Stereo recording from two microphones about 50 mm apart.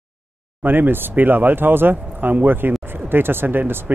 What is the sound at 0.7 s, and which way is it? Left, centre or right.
Speech, right.